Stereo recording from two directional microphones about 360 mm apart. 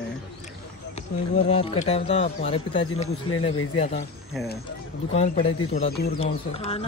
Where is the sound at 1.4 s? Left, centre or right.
Centre.